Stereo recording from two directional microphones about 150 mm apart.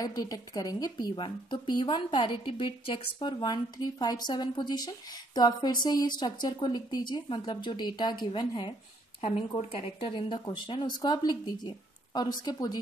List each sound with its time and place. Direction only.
0.0 s a woman's voice: 25° left (ahead or behind)